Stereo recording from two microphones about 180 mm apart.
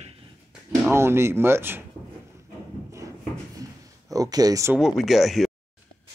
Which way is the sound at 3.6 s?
20° right (ahead or behind).